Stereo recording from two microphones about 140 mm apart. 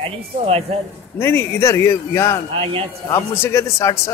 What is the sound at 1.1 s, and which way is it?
A man's voice, 15° left (ahead or behind).